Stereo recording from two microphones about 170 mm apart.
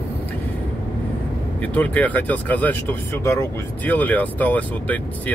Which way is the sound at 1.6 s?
10° left (ahead or behind).